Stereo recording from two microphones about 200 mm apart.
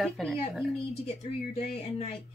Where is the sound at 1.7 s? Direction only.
30° left (ahead or behind).